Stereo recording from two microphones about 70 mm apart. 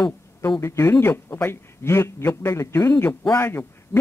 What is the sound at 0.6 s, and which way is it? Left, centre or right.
A man's voice, left.